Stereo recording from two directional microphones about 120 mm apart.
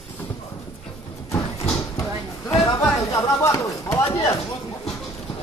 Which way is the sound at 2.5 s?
25° left (ahead or behind).